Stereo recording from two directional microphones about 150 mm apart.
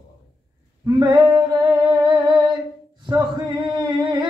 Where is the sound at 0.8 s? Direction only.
30° right (ahead or behind).